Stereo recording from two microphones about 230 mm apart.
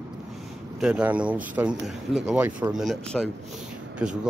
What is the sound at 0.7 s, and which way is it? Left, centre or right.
Speech, centre.